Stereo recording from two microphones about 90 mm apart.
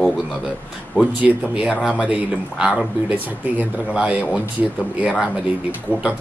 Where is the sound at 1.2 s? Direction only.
15° right (ahead or behind).